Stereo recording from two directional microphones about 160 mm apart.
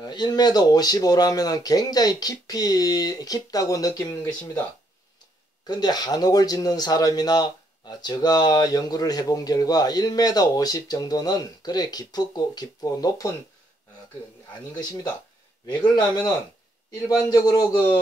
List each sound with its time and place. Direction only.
0.0 s speech: 25° left (ahead or behind)
5.7 s speech: 25° left (ahead or behind)
15.6 s speech: 25° left (ahead or behind)